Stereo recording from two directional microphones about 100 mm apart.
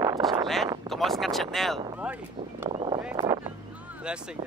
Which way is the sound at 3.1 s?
45° right (ahead or behind).